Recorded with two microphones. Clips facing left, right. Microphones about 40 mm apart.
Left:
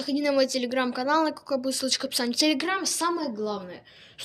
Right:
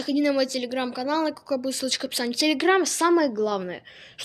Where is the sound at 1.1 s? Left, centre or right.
Centre.